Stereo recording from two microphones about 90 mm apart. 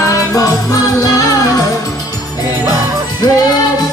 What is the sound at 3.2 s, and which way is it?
Music, 40° left (ahead or behind).